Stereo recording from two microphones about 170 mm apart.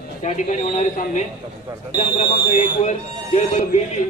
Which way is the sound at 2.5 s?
45° left (ahead or behind).